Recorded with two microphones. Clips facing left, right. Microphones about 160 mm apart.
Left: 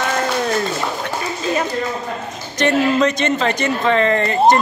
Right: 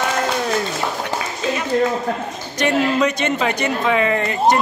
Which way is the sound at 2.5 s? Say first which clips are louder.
Left 2 dB; 10° right (ahead or behind).